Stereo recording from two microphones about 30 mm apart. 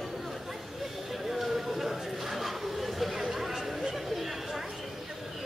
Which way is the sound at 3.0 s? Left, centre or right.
Centre.